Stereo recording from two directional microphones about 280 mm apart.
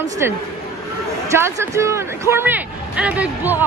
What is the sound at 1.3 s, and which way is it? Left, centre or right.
A man's voice, centre.